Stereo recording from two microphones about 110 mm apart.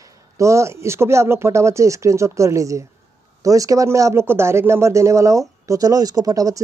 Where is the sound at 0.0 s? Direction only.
30° right (ahead or behind).